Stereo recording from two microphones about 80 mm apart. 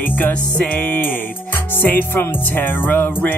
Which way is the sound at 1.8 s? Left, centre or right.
Left.